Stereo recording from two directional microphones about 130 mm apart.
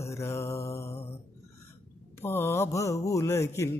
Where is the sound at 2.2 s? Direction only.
20° left (ahead or behind).